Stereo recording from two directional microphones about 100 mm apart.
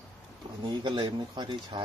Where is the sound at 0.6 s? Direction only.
50° right (ahead or behind).